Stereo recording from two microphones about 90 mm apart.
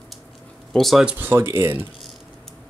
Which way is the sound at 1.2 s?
25° right (ahead or behind).